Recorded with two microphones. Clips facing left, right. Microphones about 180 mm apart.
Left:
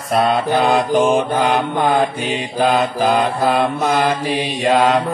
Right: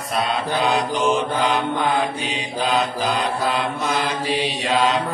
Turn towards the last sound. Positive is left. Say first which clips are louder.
# left 5 dB
turn(degrees=55)  # may be behind; listen again after turning